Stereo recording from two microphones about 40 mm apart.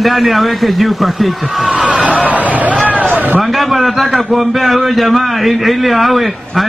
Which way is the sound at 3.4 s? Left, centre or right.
Centre.